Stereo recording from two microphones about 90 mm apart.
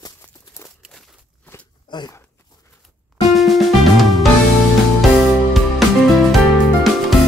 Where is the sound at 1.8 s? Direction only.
55° left (ahead or behind).